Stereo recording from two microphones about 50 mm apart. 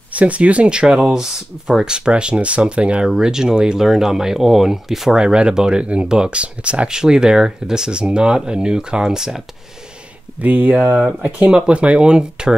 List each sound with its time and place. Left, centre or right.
0.1 s speech: right; by 5.1 s centre
5.1 s speech: centre
10.4 s speech: right
11.1 s speech: right